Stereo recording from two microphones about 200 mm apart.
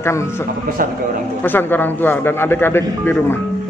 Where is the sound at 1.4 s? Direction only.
10° left (ahead or behind).